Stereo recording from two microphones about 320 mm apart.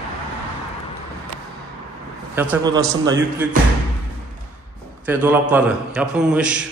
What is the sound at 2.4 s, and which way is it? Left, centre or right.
A man's voice, centre.